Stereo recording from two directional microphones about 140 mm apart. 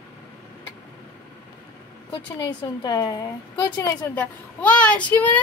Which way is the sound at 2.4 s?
30° left (ahead or behind).